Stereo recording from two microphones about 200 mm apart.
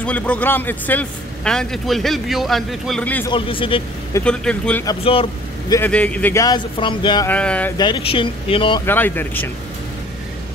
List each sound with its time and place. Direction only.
0.0 s a man's voice: 5° left (ahead or behind)
3.3 s speech: 25° left (ahead or behind)
4.1 s a man's voice: 5° left (ahead or behind)
4.8 s speech: 25° left (ahead or behind)
5.8 s speech: 5° left (ahead or behind); by 7.2 s 25° left (ahead or behind)
7.2 s speech: 5° left (ahead or behind)
7.7 s speech: 20° left (ahead or behind)
8.8 s speech: 10° left (ahead or behind)